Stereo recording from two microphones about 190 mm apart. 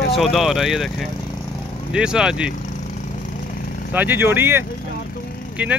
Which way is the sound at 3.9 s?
10° right (ahead or behind).